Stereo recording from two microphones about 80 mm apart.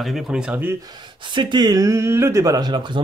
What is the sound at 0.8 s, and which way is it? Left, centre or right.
Speech, right.